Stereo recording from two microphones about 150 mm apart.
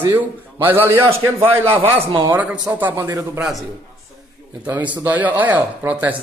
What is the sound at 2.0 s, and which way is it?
Speech, 35° right (ahead or behind).